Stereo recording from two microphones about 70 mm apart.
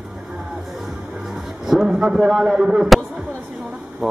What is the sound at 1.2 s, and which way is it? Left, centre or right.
A man's voice, centre.